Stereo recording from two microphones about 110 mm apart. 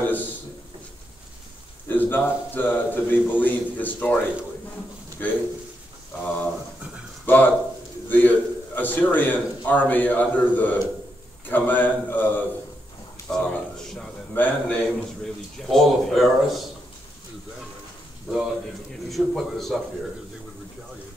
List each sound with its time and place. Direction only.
1.9 s a man's voice: 15° left (ahead or behind)
5.2 s a man's voice: 15° left (ahead or behind)
13.3 s a sound: 5° left (ahead or behind)
14.3 s a man's voice: 15° left (ahead or behind)
19.0 s a man's voice: centre (ahead or behind)